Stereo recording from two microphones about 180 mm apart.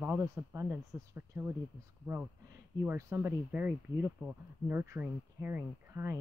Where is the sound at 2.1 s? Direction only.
25° right (ahead or behind).